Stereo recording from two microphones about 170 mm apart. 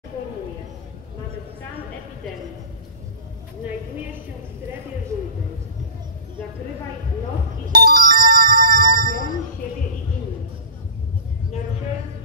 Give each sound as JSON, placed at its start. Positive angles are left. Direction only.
{"t": 7.6, "sound": "music", "side_deg": -60}